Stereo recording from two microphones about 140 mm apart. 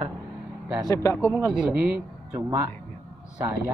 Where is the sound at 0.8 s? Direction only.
20° left (ahead or behind).